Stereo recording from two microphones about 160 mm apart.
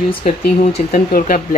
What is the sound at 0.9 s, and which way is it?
Speech, 60° left (ahead or behind).